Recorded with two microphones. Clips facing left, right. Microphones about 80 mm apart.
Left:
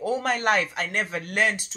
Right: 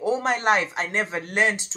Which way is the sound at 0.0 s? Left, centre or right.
Right.